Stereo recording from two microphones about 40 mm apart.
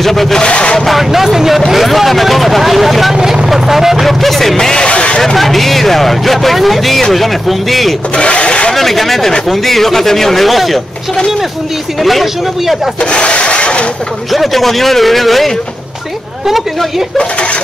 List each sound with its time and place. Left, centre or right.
0.0 s speech: centre
0.4 s speech: left
0.7 s speech: centre
3.2 s vehicle: centre
3.4 s speech: centre
4.0 s a sound: centre
4.8 s a sound: left
5.2 s speech: centre
8.2 s a sound: left
8.7 s speech: centre
12.0 s speech: centre
13.0 s a sound: left
14.3 s speech: centre
17.2 s speech: left